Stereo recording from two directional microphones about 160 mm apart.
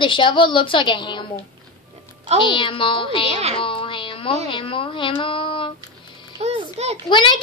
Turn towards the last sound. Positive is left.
turn(degrees=30)  # may be behind; listen again after turning